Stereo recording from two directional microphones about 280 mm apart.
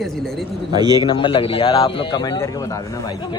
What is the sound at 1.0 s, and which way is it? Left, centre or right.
A man's voice, centre.